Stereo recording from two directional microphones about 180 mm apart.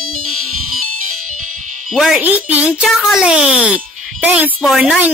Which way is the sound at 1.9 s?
Centre (ahead or behind).